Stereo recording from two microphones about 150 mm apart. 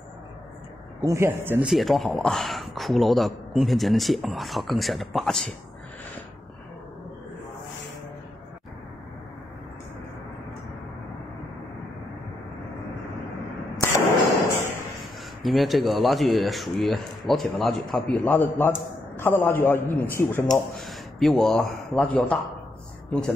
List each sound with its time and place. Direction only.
1.0 s speech: 20° right (ahead or behind)
1.7 s speech: centre (ahead or behind)
15.4 s a man's voice: centre (ahead or behind)
20.5 s speech: centre (ahead or behind)